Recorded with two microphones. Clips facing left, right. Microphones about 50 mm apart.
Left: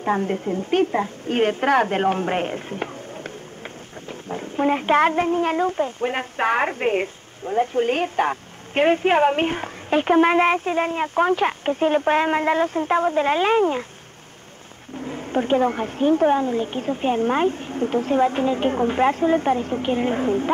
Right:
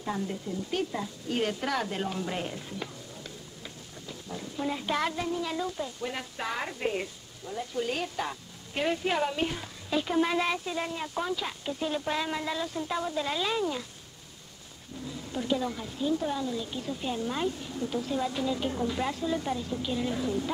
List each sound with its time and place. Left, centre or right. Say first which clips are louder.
0.0 s a woman's voice: left 11 dB; left
15.0 s a woman's voice: left 11 dB; left